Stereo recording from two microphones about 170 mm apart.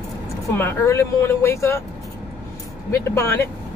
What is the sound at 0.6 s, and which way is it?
Speech, 15° left (ahead or behind).